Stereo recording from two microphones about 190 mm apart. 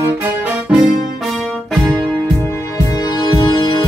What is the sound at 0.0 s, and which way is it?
Music, 5° right (ahead or behind).